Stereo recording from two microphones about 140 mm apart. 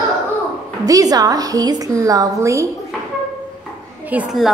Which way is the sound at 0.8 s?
25° right (ahead or behind).